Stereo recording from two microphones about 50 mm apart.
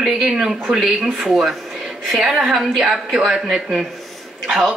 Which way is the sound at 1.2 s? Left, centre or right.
Centre.